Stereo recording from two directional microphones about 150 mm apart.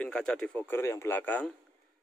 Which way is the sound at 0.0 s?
5° left (ahead or behind).